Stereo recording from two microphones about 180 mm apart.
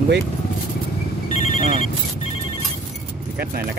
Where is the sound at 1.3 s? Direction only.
40° left (ahead or behind).